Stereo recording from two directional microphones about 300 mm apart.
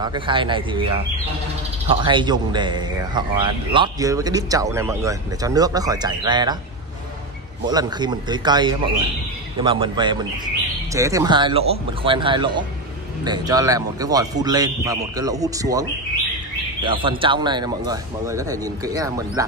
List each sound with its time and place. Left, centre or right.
0.0 s speech: centre
1.9 s speech: centre
7.6 s speech: centre